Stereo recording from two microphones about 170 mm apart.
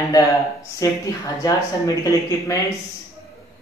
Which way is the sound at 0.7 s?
20° left (ahead or behind).